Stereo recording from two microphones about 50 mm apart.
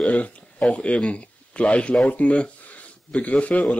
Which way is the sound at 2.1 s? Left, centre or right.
Left.